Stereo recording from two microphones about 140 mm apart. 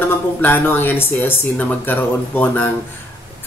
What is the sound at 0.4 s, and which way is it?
Speech, 15° left (ahead or behind).